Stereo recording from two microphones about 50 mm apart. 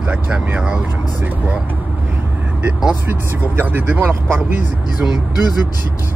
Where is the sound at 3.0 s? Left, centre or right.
Right.